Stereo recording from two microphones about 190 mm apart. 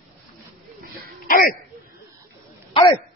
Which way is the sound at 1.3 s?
50° left (ahead or behind).